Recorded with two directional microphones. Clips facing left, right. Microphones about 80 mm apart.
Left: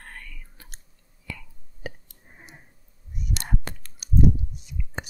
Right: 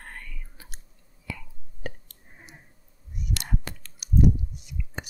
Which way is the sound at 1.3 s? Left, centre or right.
Centre.